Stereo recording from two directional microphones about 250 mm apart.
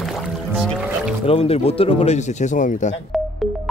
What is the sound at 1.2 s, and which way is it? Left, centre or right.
Speech, left.